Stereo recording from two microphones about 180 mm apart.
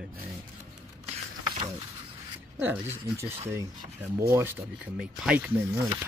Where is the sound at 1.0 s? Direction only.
30° right (ahead or behind).